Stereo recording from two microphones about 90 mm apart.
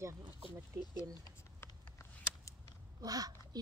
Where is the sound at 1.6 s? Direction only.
30° left (ahead or behind).